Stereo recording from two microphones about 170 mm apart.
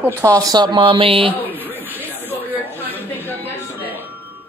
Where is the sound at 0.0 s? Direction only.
15° right (ahead or behind).